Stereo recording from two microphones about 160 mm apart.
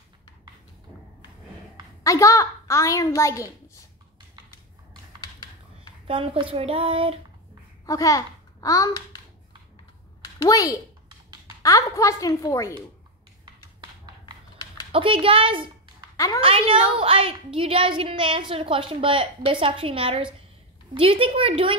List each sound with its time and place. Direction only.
2.0 s a woman's voice: 20° left (ahead or behind)
5.2 s typing: 25° left (ahead or behind)
6.0 s a woman's voice: 35° right (ahead or behind)
7.8 s a child's voice: 20° left (ahead or behind)
10.2 s a child's voice: 25° left (ahead or behind)
14.9 s a woman's voice: 35° right (ahead or behind)